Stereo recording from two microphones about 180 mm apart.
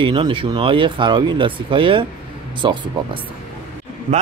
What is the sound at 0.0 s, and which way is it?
Speech, 30° right (ahead or behind).